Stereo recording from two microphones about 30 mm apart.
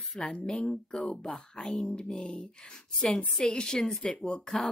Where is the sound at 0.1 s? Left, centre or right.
Centre.